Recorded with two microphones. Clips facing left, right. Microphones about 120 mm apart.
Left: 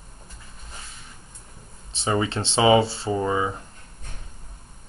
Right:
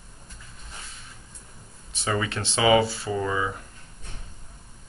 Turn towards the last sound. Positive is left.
turn(degrees=25)  # may be behind; listen again after turning